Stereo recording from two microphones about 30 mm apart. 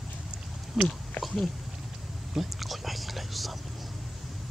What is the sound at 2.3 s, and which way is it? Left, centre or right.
Speech, centre.